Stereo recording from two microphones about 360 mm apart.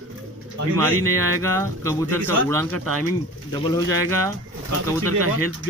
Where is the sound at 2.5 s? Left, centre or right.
Right.